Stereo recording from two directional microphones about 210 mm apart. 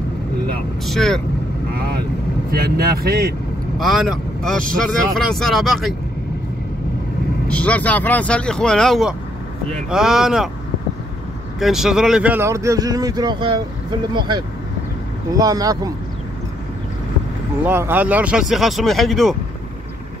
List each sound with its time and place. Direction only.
0.8 s speech: centre (ahead or behind)
2.5 s speech: 45° right (ahead or behind)
3.8 s speech: centre (ahead or behind)
7.4 s speech: 5° left (ahead or behind)
11.6 s speech: centre (ahead or behind); by 15.9 s 15° right (ahead or behind)
17.6 s speech: 10° right (ahead or behind)